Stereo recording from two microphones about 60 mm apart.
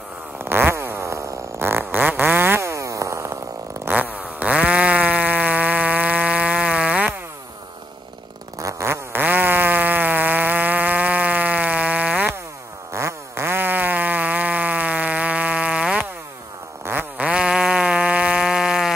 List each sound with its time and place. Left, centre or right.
0.4 s fart: right
1.6 s fart: right
2.6 s a sound: right
3.9 s fart: right
8.5 s fart: right
8.8 s fart: right
9.2 s insect: right
12.9 s fart: right; by 16.0 s centre
17.2 s insect: centre